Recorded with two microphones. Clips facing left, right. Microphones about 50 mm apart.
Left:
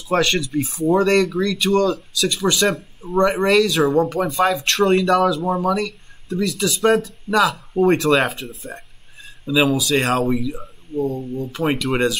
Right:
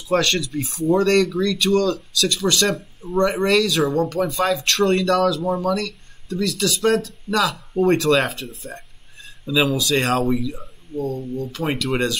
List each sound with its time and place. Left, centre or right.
0.2 s speech: centre
7.3 s speech: left
7.7 s speech: centre